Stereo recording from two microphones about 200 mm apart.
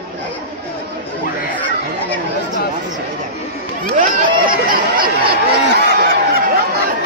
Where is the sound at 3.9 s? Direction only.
45° right (ahead or behind).